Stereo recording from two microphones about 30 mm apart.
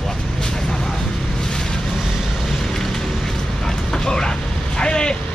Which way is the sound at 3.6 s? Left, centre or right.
Left.